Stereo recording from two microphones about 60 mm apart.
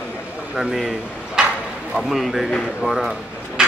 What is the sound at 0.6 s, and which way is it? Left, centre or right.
Speech, centre.